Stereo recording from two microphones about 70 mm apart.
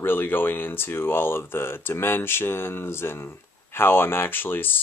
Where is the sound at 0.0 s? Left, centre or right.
Left.